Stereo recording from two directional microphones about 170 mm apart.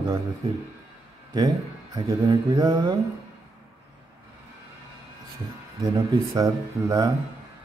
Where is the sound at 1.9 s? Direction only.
20° right (ahead or behind).